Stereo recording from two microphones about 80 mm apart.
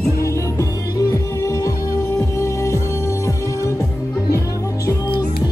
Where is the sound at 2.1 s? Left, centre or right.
Left.